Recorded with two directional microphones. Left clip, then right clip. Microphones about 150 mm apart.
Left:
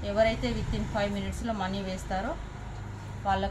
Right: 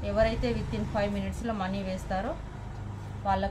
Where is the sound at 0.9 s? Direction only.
25° right (ahead or behind).